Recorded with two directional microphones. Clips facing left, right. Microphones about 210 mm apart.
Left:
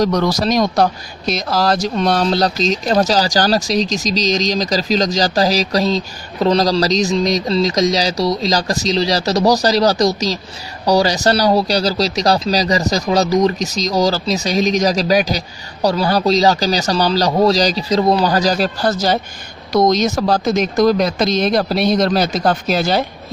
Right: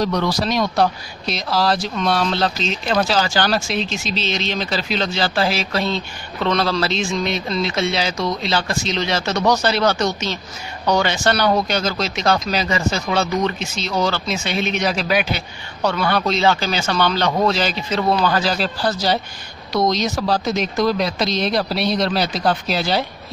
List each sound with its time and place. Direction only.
0.0 s speech: 40° left (ahead or behind)